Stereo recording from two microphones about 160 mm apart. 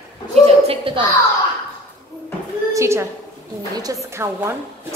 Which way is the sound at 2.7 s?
15° right (ahead or behind).